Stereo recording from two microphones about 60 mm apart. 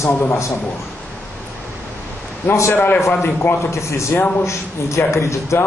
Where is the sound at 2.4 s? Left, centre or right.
Left.